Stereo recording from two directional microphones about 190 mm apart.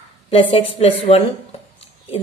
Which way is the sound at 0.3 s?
30° left (ahead or behind).